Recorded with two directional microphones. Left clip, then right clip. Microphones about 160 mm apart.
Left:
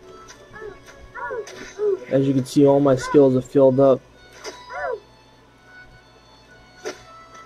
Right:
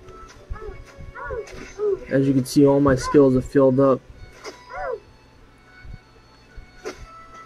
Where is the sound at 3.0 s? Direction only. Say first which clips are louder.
Left 1 dB; 20° left (ahead or behind).